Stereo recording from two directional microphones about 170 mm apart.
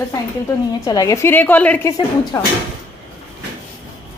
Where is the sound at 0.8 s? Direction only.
20° left (ahead or behind).